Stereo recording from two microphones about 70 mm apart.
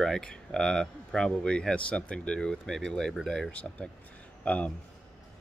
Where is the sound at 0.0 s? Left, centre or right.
Centre.